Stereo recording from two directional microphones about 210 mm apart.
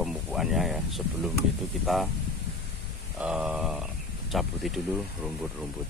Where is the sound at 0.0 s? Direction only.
Centre (ahead or behind).